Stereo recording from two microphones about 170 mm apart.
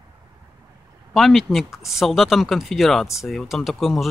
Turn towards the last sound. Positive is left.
turn(degrees=0)  # may be behind; listen again after turning